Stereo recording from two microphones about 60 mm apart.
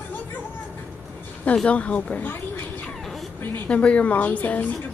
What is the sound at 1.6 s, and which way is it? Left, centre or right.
Speech, left.